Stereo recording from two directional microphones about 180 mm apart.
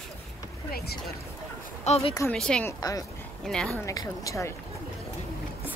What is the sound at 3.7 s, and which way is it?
Speech, 20° left (ahead or behind).